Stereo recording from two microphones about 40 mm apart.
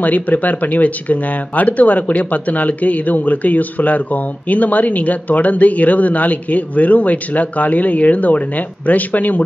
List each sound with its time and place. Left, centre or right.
0.0 s speech: left